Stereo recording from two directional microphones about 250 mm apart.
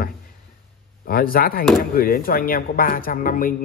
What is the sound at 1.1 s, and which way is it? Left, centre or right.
Speech, left.